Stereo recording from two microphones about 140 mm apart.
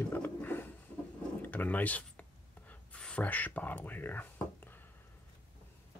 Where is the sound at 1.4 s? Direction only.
10° left (ahead or behind).